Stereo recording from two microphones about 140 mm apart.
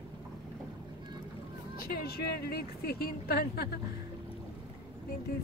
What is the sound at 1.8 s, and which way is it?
A woman's voice, 90° left.